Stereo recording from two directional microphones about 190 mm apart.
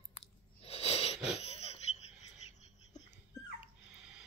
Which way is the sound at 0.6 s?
30° left (ahead or behind).